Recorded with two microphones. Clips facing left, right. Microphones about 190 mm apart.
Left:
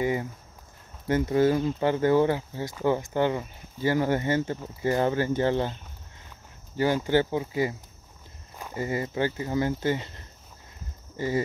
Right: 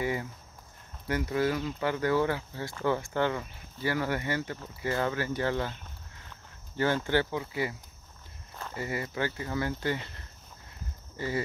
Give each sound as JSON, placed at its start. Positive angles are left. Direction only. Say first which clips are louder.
{"t": 0.0, "sound": "walk", "louder": "left 5 dB", "side_deg": 25}
{"t": 1.0, "sound": "speech", "louder": "left 6 dB", "side_deg": 25}
{"t": 6.8, "sound": "speech", "louder": "left 4 dB", "side_deg": 15}
{"t": 8.5, "sound": "walk", "louder": "left 4 dB", "side_deg": 15}
{"t": 8.8, "sound": "speech", "louder": "left 5 dB", "side_deg": 25}
{"t": 11.1, "sound": "speech", "louder": "left 5 dB", "side_deg": 20}